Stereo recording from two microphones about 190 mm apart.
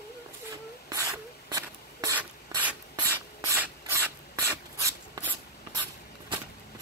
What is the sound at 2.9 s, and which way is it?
Filing, 15° right (ahead or behind).